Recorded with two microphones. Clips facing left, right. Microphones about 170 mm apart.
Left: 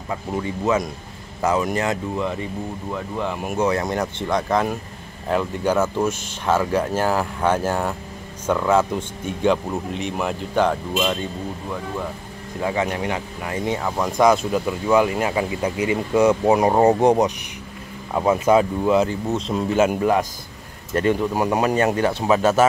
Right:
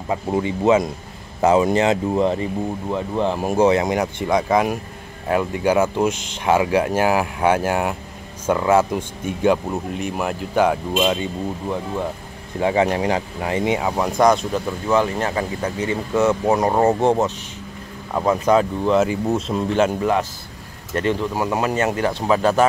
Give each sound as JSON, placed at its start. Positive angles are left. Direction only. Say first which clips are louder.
{"t": 0.1, "sound": "speech", "louder": "right 4 dB", "side_deg": -25}
{"t": 10.9, "sound": "speech", "louder": "right 3 dB", "side_deg": -20}
{"t": 12.5, "sound": "speech", "louder": "right 5 dB", "side_deg": -30}
{"t": 13.7, "sound": "speech", "louder": "right 1 dB", "side_deg": -10}
{"t": 19.0, "sound": "speech", "louder": "right 3 dB", "side_deg": -10}
{"t": 21.6, "sound": "speech", "louder": "left 1 dB", "side_deg": 30}